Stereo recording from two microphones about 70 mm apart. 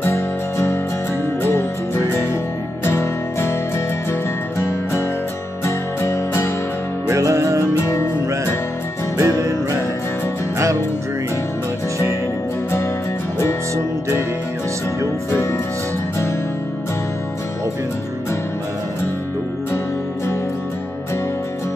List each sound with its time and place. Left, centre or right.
0.0 s music: left
2.8 s music: left
4.6 s music: left
7.1 s music: right
7.8 s music: left
9.2 s music: right
15.3 s music: left